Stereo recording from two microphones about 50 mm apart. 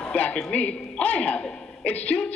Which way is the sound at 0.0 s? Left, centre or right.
Left.